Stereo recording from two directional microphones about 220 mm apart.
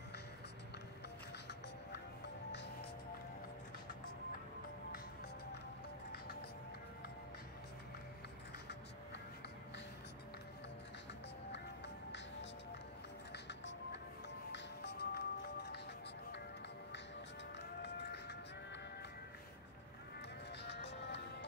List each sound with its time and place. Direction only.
1.5 s music: 50° left (ahead or behind)
13.3 s music: 50° left (ahead or behind)
17.6 s music: 50° left (ahead or behind)
20.6 s music: 50° left (ahead or behind)